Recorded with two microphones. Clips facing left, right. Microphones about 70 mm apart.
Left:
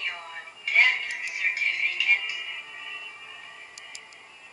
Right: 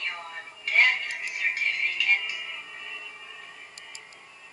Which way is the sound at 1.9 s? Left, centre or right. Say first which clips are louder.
Even; centre.